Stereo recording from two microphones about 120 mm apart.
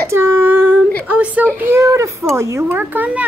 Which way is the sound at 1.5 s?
20° right (ahead or behind).